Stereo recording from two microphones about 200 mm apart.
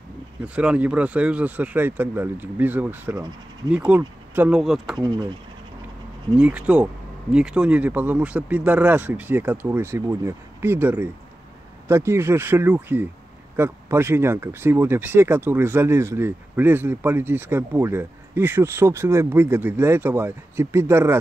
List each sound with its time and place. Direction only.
0.6 s speech: 5° right (ahead or behind)
4.9 s speech: 20° right (ahead or behind)
6.3 s speech: 5° right (ahead or behind)